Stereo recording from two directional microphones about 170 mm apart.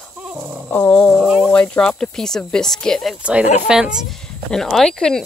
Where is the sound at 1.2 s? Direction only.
5° right (ahead or behind).